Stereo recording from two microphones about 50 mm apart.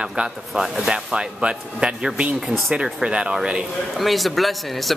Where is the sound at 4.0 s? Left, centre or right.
Centre.